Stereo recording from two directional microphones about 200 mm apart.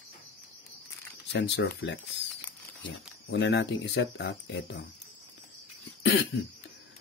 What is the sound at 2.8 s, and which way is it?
Speech, 60° left (ahead or behind).